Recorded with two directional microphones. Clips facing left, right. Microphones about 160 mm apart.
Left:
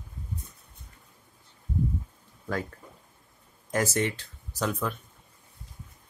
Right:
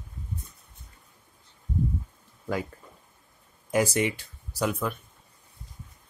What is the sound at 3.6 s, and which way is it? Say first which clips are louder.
Speech: right 3 dB; 10° right (ahead or behind).